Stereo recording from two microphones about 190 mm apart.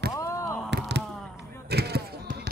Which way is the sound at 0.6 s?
65° right (ahead or behind).